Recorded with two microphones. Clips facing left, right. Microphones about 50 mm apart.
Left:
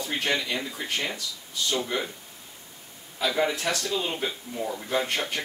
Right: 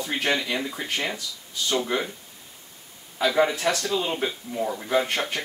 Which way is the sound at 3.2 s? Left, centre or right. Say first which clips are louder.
Right 4 dB; centre.